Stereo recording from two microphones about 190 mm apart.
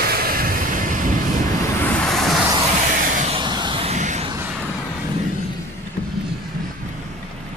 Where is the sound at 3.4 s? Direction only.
25° right (ahead or behind).